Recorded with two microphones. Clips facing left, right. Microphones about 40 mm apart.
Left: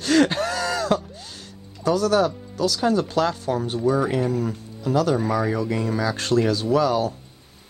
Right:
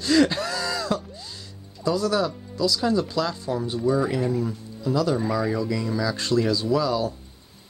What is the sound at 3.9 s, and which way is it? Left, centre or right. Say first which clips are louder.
Speech: left 1 dB; left.